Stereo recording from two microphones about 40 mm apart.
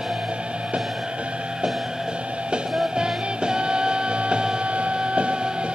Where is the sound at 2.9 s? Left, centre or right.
Right.